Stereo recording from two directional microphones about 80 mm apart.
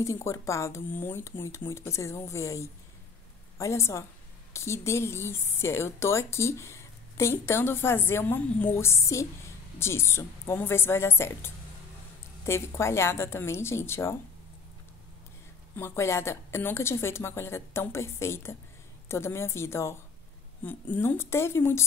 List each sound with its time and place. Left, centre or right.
0.0 s a woman's voice: left
8.7 s speech: left
15.7 s speech: left
20.6 s speech: left